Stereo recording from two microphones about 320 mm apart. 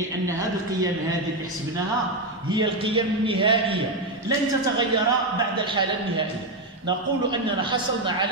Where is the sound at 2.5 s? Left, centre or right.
Centre.